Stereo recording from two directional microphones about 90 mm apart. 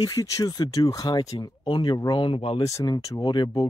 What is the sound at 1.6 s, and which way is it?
Speech, 65° left (ahead or behind).